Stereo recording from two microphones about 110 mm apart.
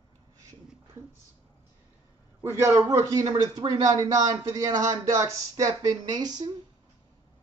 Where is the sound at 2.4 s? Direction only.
25° right (ahead or behind).